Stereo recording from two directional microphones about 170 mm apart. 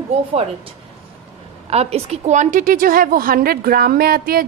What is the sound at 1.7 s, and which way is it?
A woman's voice, 40° right (ahead or behind).